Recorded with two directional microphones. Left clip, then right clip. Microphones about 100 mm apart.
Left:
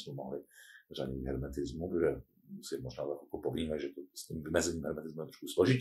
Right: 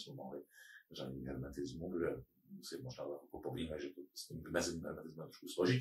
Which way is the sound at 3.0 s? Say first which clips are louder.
Left 7 dB; 25° left (ahead or behind).